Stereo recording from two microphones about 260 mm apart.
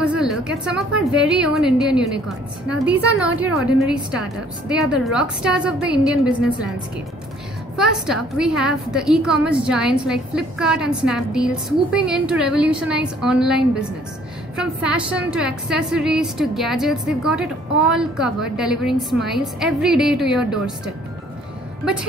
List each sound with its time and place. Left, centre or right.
0.0 s a woman's voice: centre
7.7 s a woman's voice: centre